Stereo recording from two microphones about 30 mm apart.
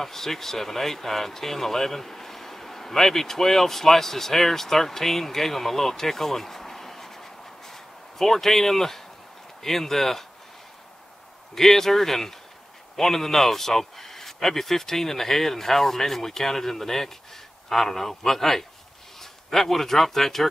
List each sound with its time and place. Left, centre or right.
0.0 s speech: centre
11.5 s speech: centre